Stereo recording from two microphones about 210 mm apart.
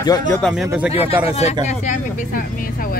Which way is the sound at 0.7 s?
10° right (ahead or behind).